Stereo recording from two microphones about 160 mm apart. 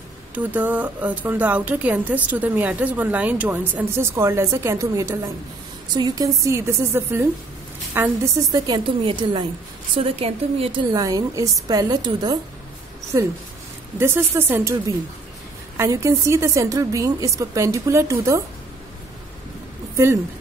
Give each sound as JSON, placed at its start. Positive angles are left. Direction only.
{"t": 0.3, "sound": "a woman's voice", "side_deg": -10}
{"t": 10.9, "sound": "a woman's voice", "side_deg": -25}